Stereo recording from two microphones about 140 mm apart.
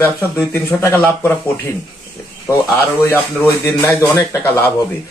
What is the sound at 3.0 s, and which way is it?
Speech, 15° left (ahead or behind).